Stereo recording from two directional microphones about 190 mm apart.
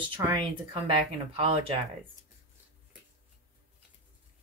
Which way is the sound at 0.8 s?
30° right (ahead or behind).